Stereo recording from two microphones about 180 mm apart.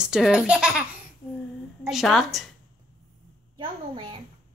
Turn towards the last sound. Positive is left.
turn(degrees=-30)  # may be behind; listen again after turning